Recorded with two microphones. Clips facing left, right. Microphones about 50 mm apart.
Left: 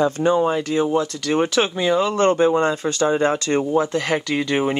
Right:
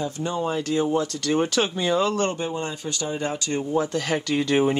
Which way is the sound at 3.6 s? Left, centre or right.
Left.